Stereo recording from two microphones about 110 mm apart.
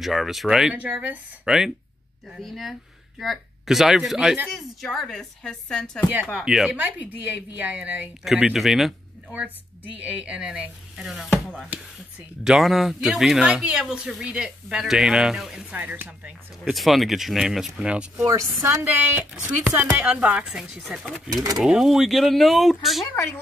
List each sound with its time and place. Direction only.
0.0 s a woman's voice: centre (ahead or behind)
10.2 s speech: 10° right (ahead or behind)
15.7 s speech: 15° right (ahead or behind)
16.7 s speech: centre (ahead or behind)
18.6 s a woman's voice: 25° right (ahead or behind); by 23.0 s centre (ahead or behind)